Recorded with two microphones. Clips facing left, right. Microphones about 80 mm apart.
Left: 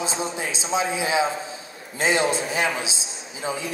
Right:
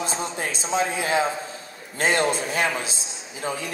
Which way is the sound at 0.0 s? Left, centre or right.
Right.